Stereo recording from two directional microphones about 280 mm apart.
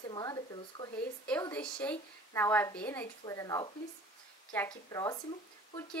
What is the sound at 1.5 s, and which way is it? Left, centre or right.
A woman's voice, centre.